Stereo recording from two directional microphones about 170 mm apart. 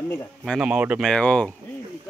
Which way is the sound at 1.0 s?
5° left (ahead or behind).